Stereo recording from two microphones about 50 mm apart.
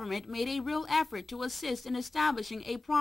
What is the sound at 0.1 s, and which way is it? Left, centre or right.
Speech, centre.